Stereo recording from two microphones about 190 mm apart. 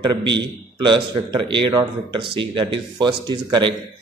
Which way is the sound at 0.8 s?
25° right (ahead or behind).